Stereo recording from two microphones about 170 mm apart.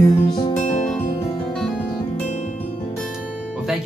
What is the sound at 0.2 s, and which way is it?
Music, 25° left (ahead or behind).